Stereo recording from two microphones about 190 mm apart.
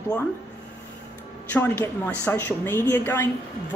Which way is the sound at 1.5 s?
10° left (ahead or behind).